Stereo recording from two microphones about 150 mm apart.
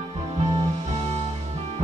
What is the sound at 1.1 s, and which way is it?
Music, 45° right (ahead or behind).